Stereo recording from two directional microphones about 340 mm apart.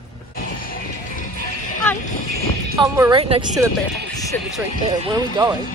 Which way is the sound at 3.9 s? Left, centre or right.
Centre.